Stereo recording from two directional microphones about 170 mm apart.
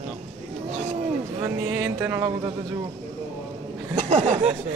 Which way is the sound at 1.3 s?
15° right (ahead or behind).